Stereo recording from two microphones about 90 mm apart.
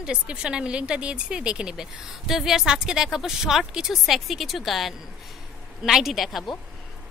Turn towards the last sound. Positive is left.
turn(degrees=0)  # may be behind; listen again after turning